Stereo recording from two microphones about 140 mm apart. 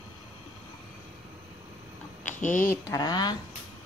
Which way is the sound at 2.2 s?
65° left (ahead or behind).